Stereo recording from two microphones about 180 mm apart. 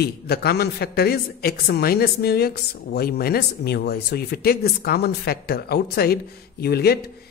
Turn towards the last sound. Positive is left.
turn(degrees=60)  # may be behind; listen again after turning